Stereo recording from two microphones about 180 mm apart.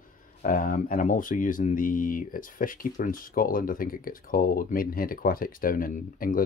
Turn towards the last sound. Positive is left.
turn(degrees=50)  # may be behind; listen again after turning